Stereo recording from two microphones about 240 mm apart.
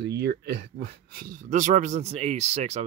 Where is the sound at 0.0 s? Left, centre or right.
Right.